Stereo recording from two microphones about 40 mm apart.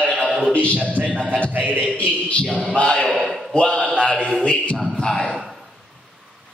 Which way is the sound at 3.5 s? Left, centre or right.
Left.